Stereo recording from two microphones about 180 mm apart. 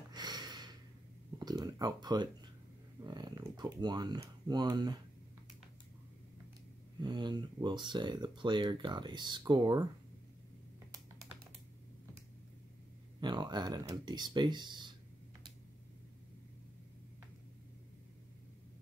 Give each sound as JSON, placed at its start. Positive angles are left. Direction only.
{"t": 0.1, "sound": "a sound", "side_deg": -25}
{"t": 3.0, "sound": "speech", "side_deg": -25}
{"t": 7.0, "sound": "speech", "side_deg": -25}
{"t": 13.2, "sound": "speech", "side_deg": -25}